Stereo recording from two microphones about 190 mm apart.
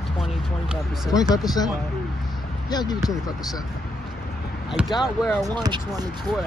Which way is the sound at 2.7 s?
20° left (ahead or behind).